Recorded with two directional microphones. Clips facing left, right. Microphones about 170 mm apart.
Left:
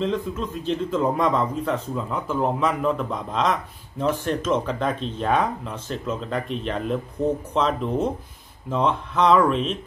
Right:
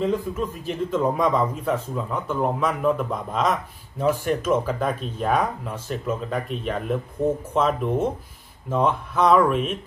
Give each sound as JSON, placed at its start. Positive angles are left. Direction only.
{"t": 0.0, "sound": "a man's voice", "side_deg": -5}